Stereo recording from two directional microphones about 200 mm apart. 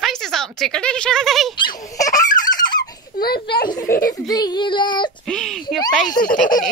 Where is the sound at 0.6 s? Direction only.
5° left (ahead or behind).